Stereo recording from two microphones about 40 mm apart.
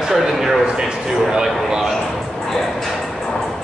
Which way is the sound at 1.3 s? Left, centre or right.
Centre.